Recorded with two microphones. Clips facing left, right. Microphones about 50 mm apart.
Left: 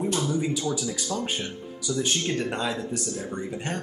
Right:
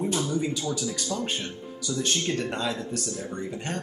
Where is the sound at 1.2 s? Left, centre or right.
Centre.